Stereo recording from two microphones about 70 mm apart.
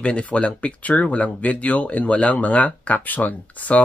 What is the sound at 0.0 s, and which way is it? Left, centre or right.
Speech, centre.